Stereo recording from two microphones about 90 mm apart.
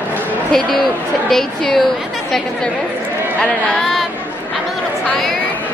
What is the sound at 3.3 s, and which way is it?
Speech, 5° left (ahead or behind).